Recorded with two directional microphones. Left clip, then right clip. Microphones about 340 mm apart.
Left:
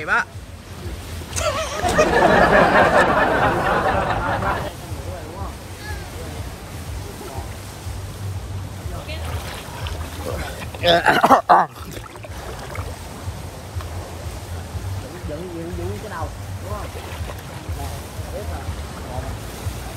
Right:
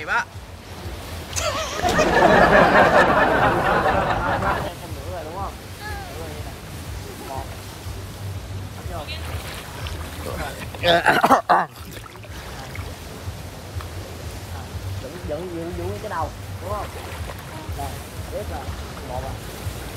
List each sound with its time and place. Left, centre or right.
0.0 s speech: centre
1.3 s a sound: centre
10.4 s speech: centre